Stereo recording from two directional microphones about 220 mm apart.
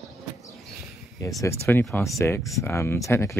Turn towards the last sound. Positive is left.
turn(degrees=10)  # may be behind; listen again after turning